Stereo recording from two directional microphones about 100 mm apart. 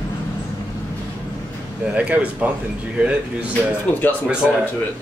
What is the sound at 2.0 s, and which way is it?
Speech, 15° right (ahead or behind).